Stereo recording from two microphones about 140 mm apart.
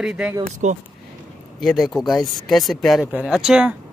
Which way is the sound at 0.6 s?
55° right (ahead or behind).